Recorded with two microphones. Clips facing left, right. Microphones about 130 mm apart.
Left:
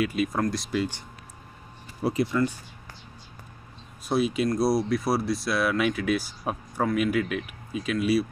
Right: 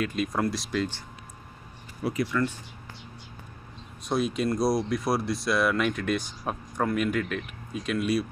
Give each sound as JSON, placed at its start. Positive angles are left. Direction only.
{"t": 0.0, "sound": "speech", "side_deg": 5}
{"t": 2.0, "sound": "speech", "side_deg": 35}
{"t": 2.3, "sound": "speech", "side_deg": 10}
{"t": 4.1, "sound": "speech", "side_deg": 5}